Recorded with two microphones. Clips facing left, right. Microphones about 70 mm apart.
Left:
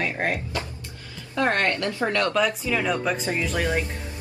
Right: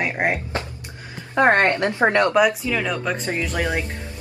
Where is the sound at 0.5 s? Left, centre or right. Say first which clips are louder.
Right 3 dB; right.